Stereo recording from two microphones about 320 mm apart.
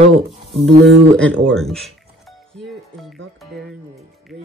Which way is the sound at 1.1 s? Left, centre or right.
Centre.